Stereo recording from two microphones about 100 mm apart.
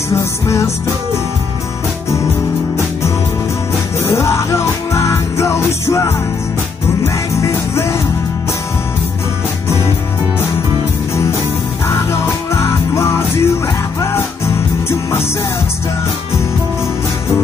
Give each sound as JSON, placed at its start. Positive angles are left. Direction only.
{"t": 0.1, "sound": "music", "side_deg": 30}
{"t": 4.0, "sound": "music", "side_deg": 30}
{"t": 7.3, "sound": "music", "side_deg": 30}
{"t": 11.9, "sound": "music", "side_deg": 25}